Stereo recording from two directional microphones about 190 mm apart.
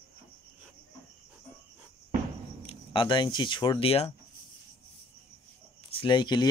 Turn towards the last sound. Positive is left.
turn(degrees=25)  # may be behind; listen again after turning